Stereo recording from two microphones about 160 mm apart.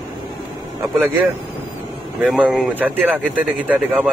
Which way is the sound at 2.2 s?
5° right (ahead or behind).